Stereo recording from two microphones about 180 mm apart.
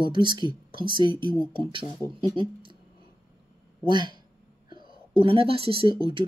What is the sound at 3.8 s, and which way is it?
Speech, 25° right (ahead or behind).